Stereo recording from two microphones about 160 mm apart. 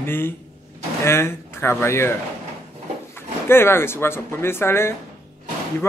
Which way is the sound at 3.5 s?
15° left (ahead or behind).